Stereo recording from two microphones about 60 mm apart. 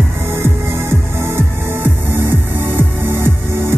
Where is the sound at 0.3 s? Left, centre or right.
Right.